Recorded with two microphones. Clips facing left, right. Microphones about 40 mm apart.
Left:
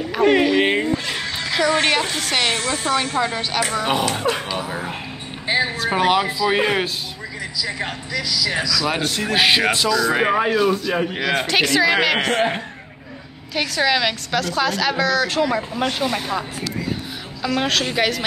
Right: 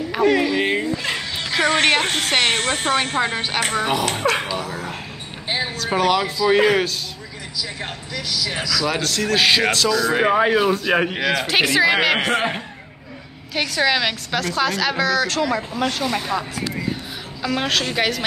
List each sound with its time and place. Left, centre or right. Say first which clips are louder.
0.2 s speech: left 2 dB; left
1.6 s a woman's voice: right 1 dB; right
4.6 s speech: left 2 dB; left
8.8 s speech: even; centre
9.8 s a woman's voice: even; centre
10.4 s speech: right 1 dB; right
11.4 s a woman's voice: even; centre